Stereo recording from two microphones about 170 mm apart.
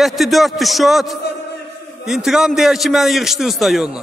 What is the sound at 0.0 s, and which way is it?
A man's voice, centre (ahead or behind).